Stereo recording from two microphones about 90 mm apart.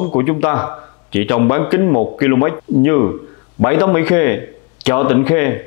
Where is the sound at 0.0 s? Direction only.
20° left (ahead or behind).